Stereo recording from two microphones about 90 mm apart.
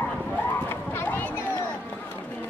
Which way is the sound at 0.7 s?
25° left (ahead or behind).